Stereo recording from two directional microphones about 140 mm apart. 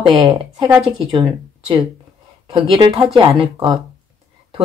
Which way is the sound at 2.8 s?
35° right (ahead or behind).